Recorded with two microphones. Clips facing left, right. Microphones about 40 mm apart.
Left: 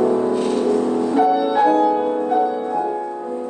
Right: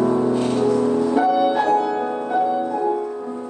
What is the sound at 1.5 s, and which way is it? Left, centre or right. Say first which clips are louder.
Music: left 2 dB; centre.